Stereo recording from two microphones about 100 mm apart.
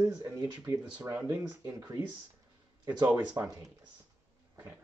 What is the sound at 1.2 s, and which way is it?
Speech, 20° right (ahead or behind).